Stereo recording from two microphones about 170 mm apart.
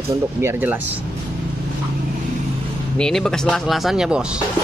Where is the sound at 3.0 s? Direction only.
5° left (ahead or behind).